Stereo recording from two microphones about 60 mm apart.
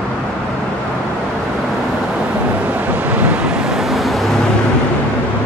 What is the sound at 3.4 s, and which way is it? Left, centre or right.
Vehicle, centre.